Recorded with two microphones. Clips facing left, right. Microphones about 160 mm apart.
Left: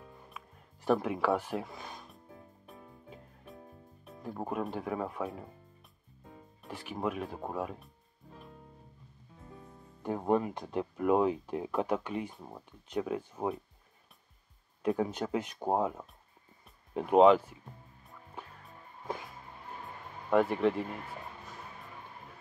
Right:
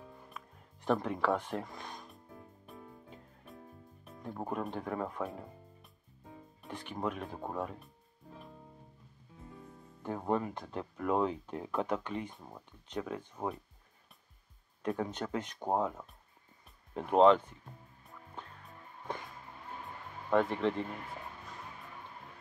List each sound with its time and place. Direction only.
0.3 s music: centre (ahead or behind)
4.0 s speech: 5° left (ahead or behind)
6.6 s speech: 5° left (ahead or behind)
10.0 s speech: 15° left (ahead or behind)
14.8 s speech: 10° left (ahead or behind)
18.4 s music: 10° left (ahead or behind)
20.2 s speech: 5° left (ahead or behind)